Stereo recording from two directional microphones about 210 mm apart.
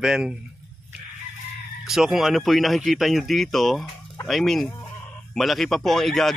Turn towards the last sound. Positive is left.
turn(degrees=0)  # may be behind; listen again after turning